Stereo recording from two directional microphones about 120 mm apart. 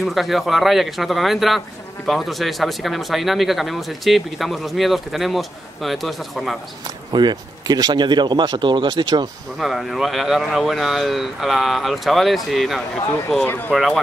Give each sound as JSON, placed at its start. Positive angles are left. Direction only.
{"t": 0.0, "sound": "speech", "side_deg": 0}
{"t": 7.1, "sound": "speech", "side_deg": -35}
{"t": 9.6, "sound": "speech", "side_deg": 0}
{"t": 13.5, "sound": "speech", "side_deg": 15}